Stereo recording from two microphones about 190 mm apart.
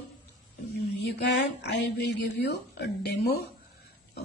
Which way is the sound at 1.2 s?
65° left (ahead or behind).